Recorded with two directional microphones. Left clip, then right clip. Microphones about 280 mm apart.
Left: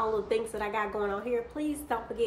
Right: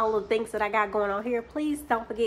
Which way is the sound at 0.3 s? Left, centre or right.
Right.